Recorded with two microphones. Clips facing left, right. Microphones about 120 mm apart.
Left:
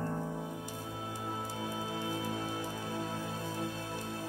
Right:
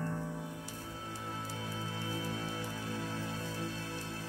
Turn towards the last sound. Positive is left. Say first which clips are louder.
# left 3 dB
turn(degrees=45)  # may be behind; listen again after turning